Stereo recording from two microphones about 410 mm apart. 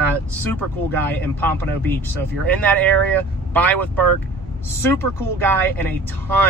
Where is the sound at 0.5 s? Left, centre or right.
Centre.